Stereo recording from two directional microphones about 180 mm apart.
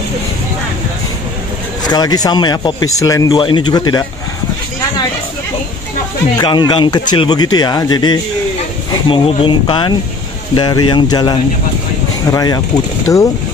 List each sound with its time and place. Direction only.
1.8 s a man's voice: 25° left (ahead or behind)
6.3 s a man's voice: 25° left (ahead or behind)